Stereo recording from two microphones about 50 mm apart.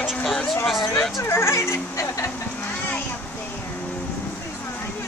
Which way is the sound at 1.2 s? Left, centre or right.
Left.